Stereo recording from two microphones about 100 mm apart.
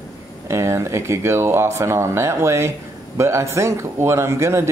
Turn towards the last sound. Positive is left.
turn(degrees=-25)  # may be behind; listen again after turning